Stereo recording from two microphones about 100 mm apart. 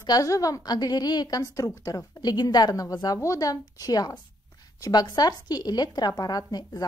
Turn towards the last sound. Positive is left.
turn(degrees=40)  # may be behind; listen again after turning